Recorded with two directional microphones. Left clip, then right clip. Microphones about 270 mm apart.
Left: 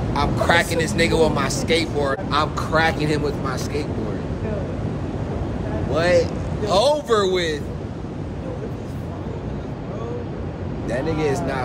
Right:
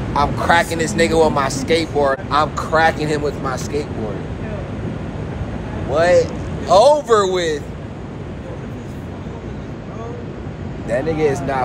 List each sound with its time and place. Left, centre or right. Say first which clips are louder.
0.1 s speech: right 4 dB; centre
5.9 s speech: right 5 dB; centre
10.9 s speech: right 5 dB; centre